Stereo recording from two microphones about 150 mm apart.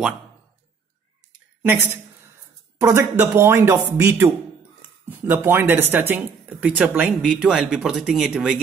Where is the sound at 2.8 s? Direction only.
20° right (ahead or behind).